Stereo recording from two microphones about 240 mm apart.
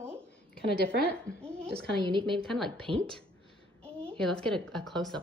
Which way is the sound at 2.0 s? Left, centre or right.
Centre.